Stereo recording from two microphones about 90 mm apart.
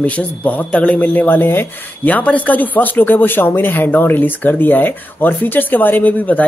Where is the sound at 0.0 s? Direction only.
15° left (ahead or behind).